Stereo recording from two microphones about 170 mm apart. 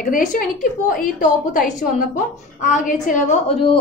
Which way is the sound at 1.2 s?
50° left (ahead or behind).